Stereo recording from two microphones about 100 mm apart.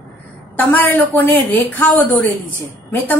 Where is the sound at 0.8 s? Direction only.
20° left (ahead or behind).